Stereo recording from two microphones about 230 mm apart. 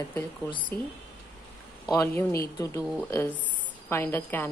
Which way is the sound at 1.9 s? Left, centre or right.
Centre.